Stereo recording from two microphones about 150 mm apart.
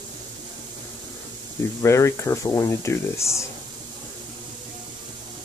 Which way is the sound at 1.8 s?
20° left (ahead or behind).